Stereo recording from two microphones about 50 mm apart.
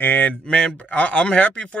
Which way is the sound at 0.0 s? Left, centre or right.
Left.